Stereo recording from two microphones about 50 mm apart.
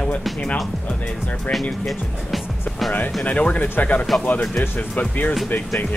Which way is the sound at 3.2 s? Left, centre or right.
Left.